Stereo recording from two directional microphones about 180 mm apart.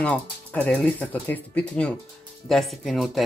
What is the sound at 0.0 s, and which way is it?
Speech, 10° left (ahead or behind).